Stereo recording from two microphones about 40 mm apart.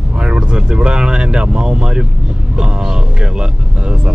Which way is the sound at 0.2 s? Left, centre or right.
Right.